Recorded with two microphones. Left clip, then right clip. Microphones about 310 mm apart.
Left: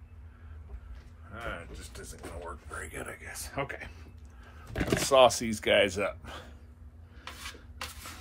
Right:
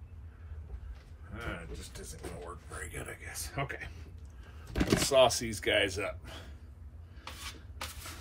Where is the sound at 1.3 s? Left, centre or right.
Centre.